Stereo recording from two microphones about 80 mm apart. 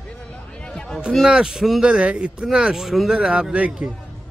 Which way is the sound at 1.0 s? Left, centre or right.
Centre.